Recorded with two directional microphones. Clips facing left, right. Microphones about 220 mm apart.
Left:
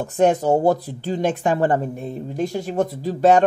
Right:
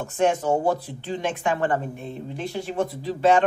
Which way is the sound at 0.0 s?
40° left (ahead or behind).